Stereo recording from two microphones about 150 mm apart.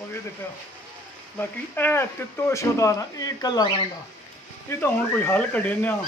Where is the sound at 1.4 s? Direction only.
15° left (ahead or behind).